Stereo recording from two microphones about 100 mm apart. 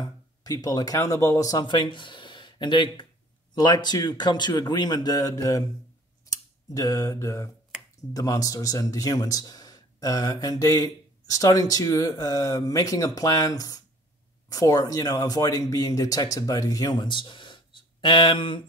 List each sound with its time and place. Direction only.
0.0 s a man's voice: 40° left (ahead or behind)
6.3 s a sound: 40° left (ahead or behind)
8.1 s speech: 35° left (ahead or behind); by 18.6 s 55° left (ahead or behind)